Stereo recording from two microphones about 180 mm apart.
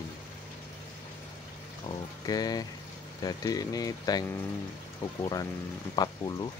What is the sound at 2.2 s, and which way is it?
Speech, 20° left (ahead or behind).